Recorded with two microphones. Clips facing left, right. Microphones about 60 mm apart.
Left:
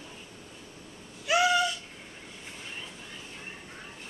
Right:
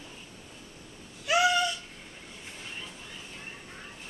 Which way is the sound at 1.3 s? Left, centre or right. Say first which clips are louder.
Even; centre.